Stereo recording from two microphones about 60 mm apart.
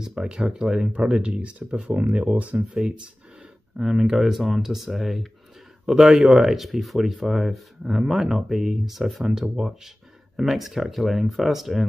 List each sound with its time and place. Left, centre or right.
0.0 s speech: centre
3.7 s speech: centre